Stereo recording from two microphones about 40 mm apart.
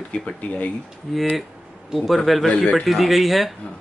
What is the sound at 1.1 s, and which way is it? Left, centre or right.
Speech, centre.